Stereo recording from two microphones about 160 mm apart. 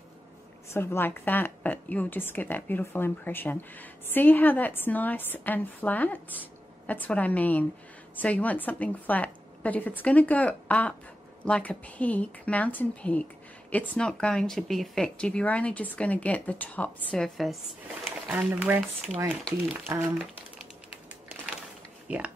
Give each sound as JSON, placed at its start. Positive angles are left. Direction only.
{"t": 0.7, "sound": "a woman's voice", "side_deg": 15}
{"t": 18.2, "sound": "speech", "side_deg": -10}
{"t": 22.0, "sound": "a sound", "side_deg": -10}